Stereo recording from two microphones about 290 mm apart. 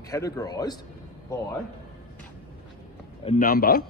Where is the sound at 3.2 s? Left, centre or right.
Left.